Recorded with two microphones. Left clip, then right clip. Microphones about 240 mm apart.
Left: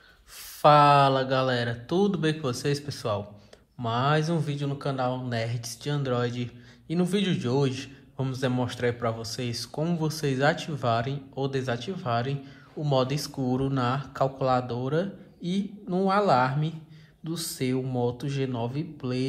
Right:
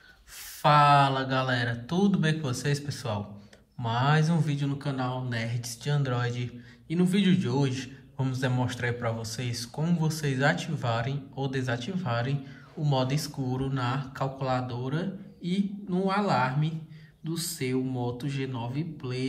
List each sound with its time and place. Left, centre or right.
0.6 s speech: centre